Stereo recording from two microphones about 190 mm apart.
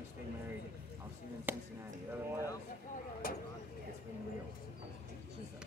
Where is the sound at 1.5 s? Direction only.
10° right (ahead or behind).